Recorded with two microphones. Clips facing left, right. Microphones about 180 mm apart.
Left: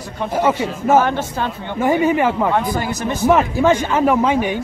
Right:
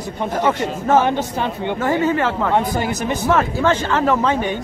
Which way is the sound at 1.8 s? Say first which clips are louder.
Left 4 dB; 15° left (ahead or behind).